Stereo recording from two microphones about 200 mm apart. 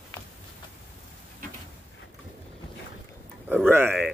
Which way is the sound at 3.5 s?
10° right (ahead or behind).